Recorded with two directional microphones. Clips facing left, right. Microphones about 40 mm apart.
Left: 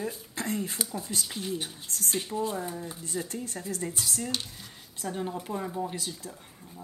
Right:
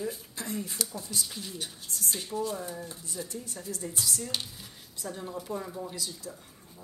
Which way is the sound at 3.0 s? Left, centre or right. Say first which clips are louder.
Left 4 dB; left.